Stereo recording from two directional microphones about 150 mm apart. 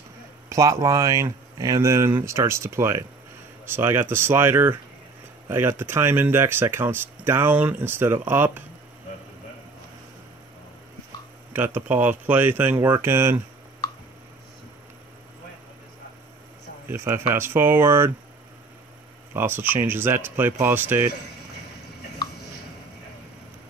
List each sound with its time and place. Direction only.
0.5 s speech: 20° right (ahead or behind)
11.5 s speech: 15° right (ahead or behind)
16.9 s speech: 15° right (ahead or behind)
19.3 s speech: 15° right (ahead or behind)